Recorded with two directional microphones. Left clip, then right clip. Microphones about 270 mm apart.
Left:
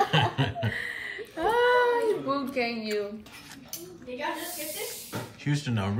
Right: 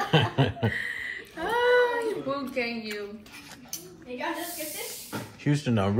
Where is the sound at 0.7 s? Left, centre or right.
Left.